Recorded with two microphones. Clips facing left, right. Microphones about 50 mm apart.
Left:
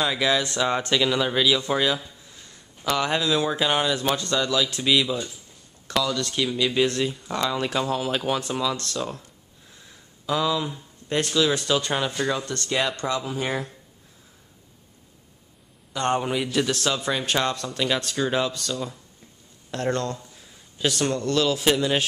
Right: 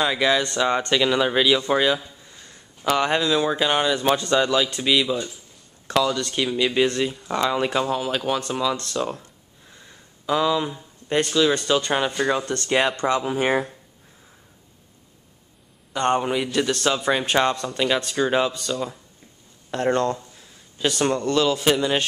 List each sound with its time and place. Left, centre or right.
0.0 s speech: centre
1.7 s a sound: centre
3.0 s speech: centre
4.0 s speech: centre
12.4 s speech: centre
15.9 s speech: centre
20.3 s a man's voice: centre